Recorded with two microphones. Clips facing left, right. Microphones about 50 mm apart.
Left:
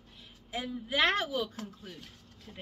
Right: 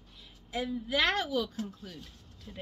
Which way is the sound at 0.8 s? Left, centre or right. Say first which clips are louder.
Left 2 dB; left.